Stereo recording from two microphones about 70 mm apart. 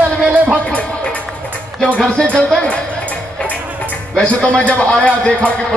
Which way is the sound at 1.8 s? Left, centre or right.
Centre.